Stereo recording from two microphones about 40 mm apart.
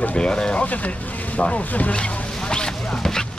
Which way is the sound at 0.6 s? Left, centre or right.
Left.